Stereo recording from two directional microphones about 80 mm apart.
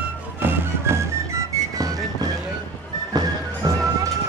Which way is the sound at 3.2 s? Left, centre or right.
Right.